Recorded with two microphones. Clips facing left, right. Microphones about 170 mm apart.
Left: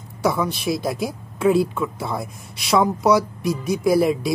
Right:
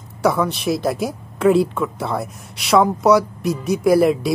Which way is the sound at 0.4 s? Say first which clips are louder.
Right 3 dB; centre (ahead or behind).